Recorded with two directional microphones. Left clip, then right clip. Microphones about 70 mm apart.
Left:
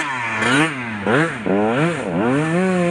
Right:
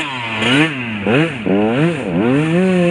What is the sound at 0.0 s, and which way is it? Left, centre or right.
Vehicle, centre.